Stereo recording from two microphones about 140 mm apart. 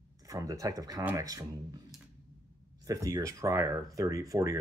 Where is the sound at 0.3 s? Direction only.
25° right (ahead or behind).